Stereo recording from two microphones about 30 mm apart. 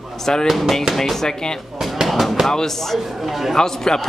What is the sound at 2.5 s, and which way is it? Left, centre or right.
Speech, centre.